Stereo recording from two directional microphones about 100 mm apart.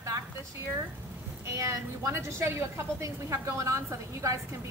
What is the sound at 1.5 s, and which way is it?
A woman's voice, 30° right (ahead or behind).